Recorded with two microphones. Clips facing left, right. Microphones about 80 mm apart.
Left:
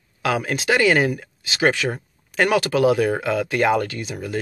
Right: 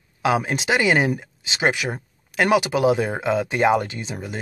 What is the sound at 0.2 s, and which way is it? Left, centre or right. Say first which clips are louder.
Speech: right 2 dB; centre.